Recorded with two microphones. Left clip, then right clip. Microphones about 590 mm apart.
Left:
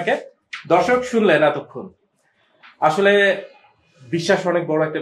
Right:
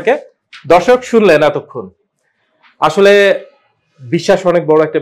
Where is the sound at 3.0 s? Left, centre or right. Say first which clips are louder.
Right 10 dB; right.